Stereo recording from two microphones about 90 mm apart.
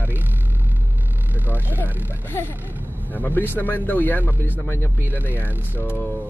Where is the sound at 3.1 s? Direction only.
20° left (ahead or behind).